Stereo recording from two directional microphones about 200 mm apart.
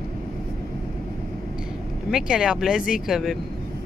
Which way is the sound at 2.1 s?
5° right (ahead or behind).